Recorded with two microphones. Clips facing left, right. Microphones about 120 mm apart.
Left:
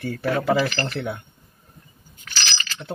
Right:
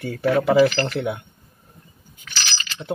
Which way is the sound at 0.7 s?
10° right (ahead or behind).